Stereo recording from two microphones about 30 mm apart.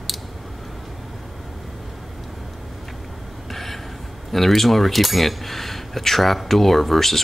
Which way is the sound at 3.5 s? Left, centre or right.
Centre.